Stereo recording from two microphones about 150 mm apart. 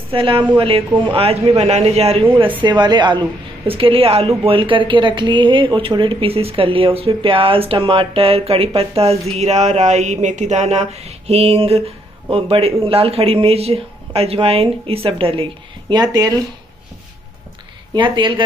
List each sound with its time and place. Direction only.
0.1 s speech: 35° right (ahead or behind)
2.6 s speech: 30° right (ahead or behind)
17.9 s speech: 30° right (ahead or behind)